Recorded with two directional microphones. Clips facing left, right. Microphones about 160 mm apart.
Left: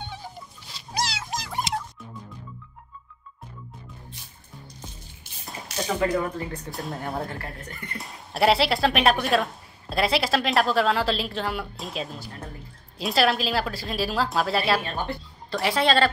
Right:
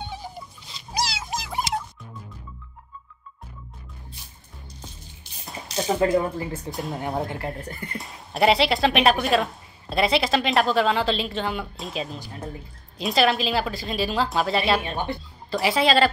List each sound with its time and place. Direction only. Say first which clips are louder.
0.9 s dog: right 1 dB; 5° right (ahead or behind)
5.9 s speech: right 4 dB; 25° right (ahead or behind)
6.7 s a woman's voice: right 3 dB; centre (ahead or behind)
7.1 s speech: right 4 dB; 15° right (ahead or behind)
8.0 s a woman's voice: right 1 dB; centre (ahead or behind)
14.8 s speech: right 2 dB; 20° right (ahead or behind)
15.5 s a woman's voice: right 2 dB; centre (ahead or behind)